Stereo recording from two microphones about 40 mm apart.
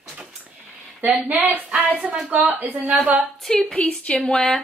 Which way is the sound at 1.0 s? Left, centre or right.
Right.